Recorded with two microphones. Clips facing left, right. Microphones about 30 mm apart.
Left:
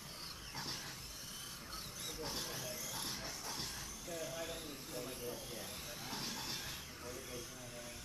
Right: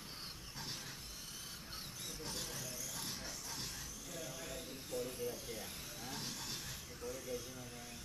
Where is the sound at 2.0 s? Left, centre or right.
Centre.